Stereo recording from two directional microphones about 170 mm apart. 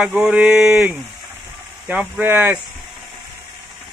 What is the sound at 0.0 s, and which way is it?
Speech, 5° right (ahead or behind).